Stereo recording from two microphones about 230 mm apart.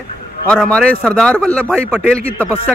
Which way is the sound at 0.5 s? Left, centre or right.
Centre.